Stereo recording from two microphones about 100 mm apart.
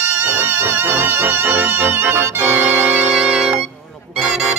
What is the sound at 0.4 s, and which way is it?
Music, 20° right (ahead or behind).